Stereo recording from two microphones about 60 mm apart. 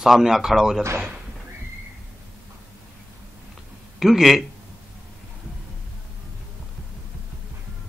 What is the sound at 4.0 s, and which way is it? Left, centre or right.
Speech, centre.